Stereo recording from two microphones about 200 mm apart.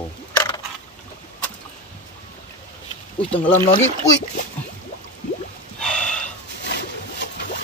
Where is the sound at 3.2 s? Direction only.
25° left (ahead or behind).